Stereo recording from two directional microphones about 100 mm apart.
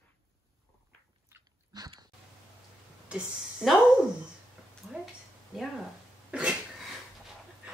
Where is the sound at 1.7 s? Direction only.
40° right (ahead or behind).